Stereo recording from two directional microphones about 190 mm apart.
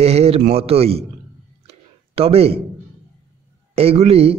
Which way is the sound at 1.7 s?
30° right (ahead or behind).